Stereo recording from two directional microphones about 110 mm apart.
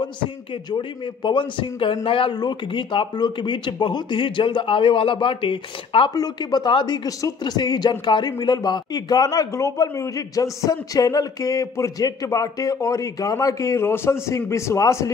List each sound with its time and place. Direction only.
0.7 s a man's voice: 45° left (ahead or behind)
6.1 s speech: 40° left (ahead or behind)
7.1 s a man's voice: 30° left (ahead or behind)